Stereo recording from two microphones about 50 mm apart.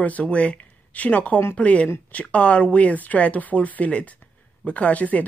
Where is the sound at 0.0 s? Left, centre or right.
Left.